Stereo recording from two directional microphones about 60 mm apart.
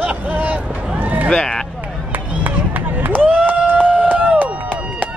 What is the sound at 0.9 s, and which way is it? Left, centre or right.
Run, right.